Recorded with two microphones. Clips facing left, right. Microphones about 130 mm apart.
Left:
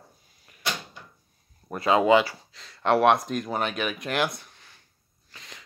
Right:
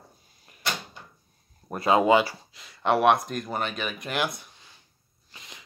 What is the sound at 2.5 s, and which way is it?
Speech, 5° right (ahead or behind).